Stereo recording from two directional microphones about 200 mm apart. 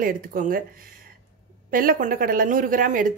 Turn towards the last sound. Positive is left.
turn(degrees=-40)  # may be behind; listen again after turning